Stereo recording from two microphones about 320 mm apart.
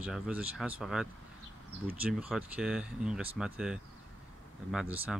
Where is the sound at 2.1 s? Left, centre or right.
Centre.